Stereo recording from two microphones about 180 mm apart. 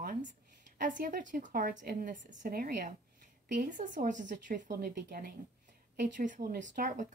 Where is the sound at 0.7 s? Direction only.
45° right (ahead or behind).